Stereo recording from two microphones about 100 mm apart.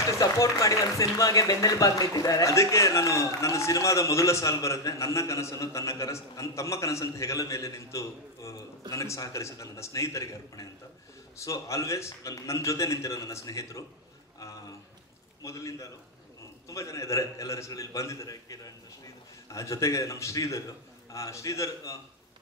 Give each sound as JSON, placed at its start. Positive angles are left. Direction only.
{"t": 0.2, "sound": "speech", "side_deg": 35}
{"t": 15.4, "sound": "speech", "side_deg": 30}